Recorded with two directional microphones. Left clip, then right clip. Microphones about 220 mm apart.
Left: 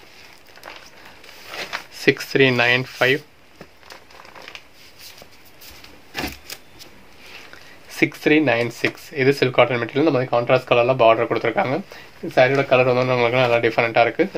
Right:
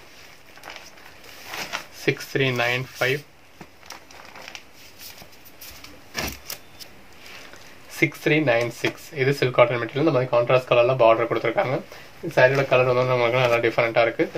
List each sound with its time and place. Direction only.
2.0 s speech: 45° left (ahead or behind)
7.9 s speech: 40° left (ahead or behind)